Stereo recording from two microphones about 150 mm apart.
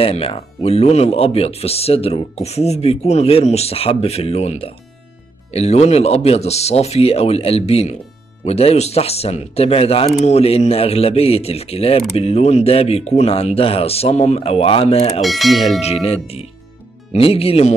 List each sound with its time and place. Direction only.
0.0 s speech: 40° left (ahead or behind)
15.2 s speech: centre (ahead or behind)
16.1 s speech: 40° left (ahead or behind)